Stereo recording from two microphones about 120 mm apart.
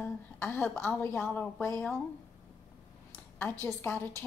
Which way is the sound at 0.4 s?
20° left (ahead or behind).